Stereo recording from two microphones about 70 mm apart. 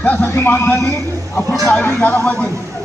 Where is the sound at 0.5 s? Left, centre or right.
Left.